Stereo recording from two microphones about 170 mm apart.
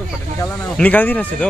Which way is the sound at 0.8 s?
10° left (ahead or behind).